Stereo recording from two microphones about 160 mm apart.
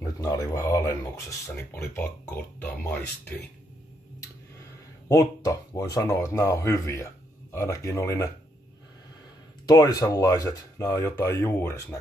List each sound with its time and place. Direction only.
0.0 s speech: 20° left (ahead or behind)
5.0 s speech: 20° left (ahead or behind)
9.7 s speech: 25° left (ahead or behind)